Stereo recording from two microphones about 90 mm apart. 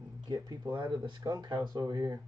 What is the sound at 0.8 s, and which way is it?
Speech, 55° right (ahead or behind).